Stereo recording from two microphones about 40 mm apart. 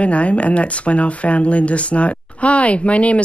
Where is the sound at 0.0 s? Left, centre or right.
Left.